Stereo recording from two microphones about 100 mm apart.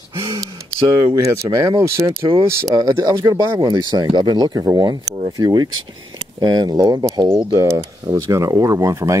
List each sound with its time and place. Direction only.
0.1 s gasp: 35° right (ahead or behind)
1.0 s speech: 35° right (ahead or behind)
3.9 s speech: 45° right (ahead or behind)
4.7 s speech: 50° right (ahead or behind); by 9.2 s 30° right (ahead or behind)